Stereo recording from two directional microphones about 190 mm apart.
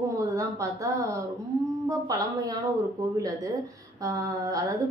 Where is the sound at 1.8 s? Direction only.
20° right (ahead or behind).